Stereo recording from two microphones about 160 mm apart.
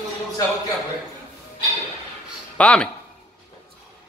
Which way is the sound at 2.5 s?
5° left (ahead or behind).